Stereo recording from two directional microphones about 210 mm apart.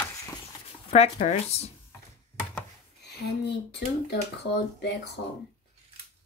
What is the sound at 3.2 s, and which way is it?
Speech, 50° left (ahead or behind).